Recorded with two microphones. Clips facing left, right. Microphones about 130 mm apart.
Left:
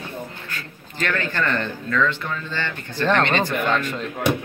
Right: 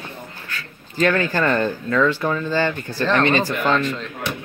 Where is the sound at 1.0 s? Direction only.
35° right (ahead or behind).